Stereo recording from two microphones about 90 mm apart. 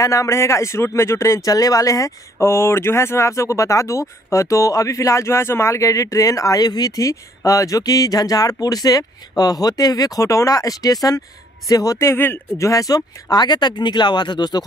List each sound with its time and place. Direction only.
0.0 s speech: 35° left (ahead or behind); by 14.6 s 55° left (ahead or behind)